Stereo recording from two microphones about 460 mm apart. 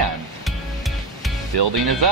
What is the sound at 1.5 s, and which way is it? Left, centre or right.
Speech, right.